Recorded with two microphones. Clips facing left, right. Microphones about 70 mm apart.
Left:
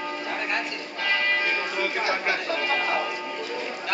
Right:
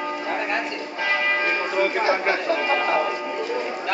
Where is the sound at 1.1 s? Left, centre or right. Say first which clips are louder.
Right 2 dB; centre.